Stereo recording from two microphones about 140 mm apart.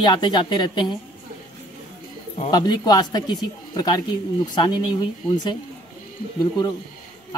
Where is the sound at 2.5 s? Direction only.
30° left (ahead or behind).